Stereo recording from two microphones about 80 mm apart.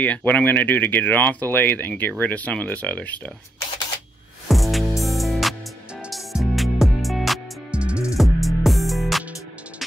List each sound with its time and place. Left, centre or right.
0.0 s speech: left
4.5 s music: centre
7.7 s music: centre
8.2 s music: centre